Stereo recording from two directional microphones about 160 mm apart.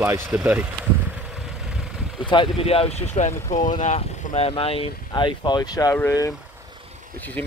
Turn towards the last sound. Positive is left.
turn(degrees=15)  # may be behind; listen again after turning